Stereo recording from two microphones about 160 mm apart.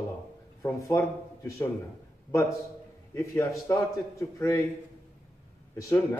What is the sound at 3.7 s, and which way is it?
Speech, 20° left (ahead or behind).